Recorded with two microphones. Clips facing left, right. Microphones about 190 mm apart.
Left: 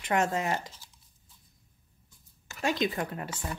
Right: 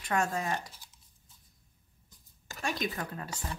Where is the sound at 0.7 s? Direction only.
15° right (ahead or behind).